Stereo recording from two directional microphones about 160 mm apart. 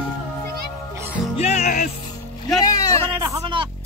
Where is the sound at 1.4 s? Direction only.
45° left (ahead or behind).